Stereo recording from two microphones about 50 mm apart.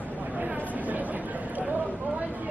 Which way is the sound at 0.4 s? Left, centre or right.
Right.